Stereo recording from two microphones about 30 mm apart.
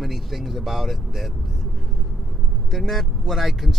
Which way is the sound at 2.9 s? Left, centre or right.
Centre.